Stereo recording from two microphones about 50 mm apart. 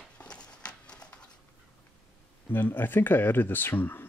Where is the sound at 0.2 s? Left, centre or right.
Left.